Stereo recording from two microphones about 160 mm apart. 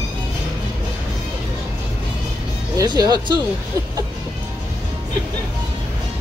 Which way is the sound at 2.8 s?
25° right (ahead or behind).